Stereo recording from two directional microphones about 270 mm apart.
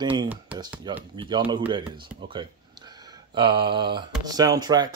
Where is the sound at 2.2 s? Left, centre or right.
Centre.